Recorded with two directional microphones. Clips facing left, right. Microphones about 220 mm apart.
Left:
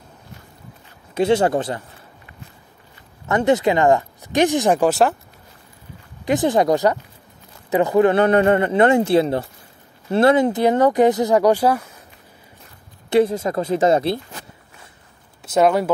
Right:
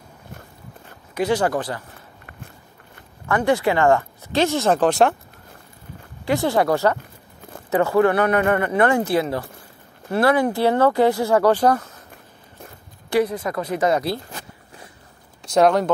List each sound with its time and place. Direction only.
1.1 s a man's voice: 25° left (ahead or behind)
3.3 s speech: 20° left (ahead or behind); by 5.1 s 5° left (ahead or behind)
6.2 s a man's voice: 15° left (ahead or behind)
13.1 s a man's voice: 25° left (ahead or behind)
15.4 s speech: 5° left (ahead or behind)